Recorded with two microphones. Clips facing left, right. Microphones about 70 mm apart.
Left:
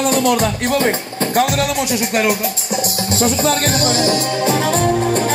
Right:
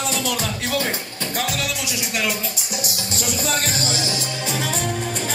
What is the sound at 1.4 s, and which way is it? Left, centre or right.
Music, left.